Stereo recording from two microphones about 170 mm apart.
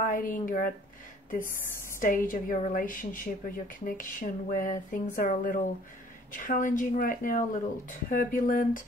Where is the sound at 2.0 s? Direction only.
50° left (ahead or behind).